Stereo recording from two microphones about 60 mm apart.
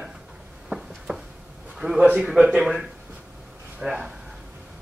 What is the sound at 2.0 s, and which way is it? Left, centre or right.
Speech, right.